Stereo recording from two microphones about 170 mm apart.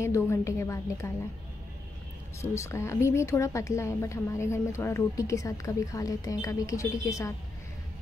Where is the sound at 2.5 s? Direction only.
15° left (ahead or behind).